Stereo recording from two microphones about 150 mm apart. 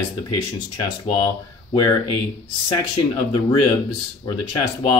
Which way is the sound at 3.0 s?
40° left (ahead or behind).